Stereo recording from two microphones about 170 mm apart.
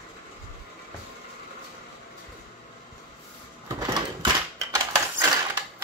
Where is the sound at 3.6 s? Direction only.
20° right (ahead or behind).